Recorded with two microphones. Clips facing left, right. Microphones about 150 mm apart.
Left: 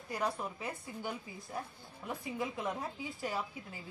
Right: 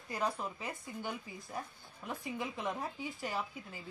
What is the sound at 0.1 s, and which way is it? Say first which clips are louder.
Speech: even; 10° left (ahead or behind).